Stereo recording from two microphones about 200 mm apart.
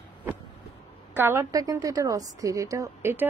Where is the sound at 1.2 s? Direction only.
15° right (ahead or behind).